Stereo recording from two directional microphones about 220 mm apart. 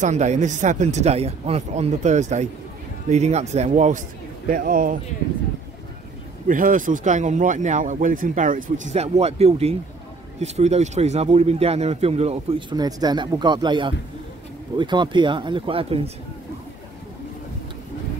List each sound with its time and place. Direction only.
0.0 s speech: 30° right (ahead or behind)
6.4 s a man's voice: 40° right (ahead or behind)